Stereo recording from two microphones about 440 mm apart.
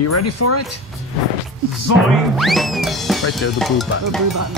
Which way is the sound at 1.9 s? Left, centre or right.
Centre.